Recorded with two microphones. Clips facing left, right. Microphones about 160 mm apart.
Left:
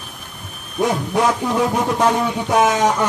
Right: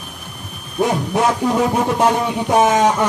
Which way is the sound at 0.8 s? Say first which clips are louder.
Right 1 dB; 20° right (ahead or behind).